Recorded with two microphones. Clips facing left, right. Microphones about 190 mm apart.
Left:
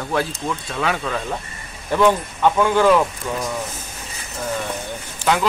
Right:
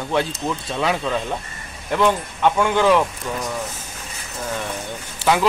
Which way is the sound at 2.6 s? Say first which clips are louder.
Left 2 dB; 5° left (ahead or behind).